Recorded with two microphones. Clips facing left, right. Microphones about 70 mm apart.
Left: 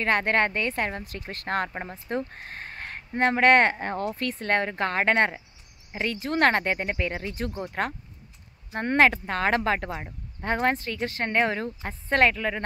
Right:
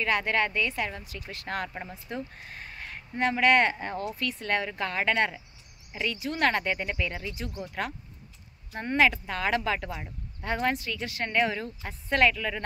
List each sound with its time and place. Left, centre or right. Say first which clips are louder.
0.0 s speech: left 3 dB; left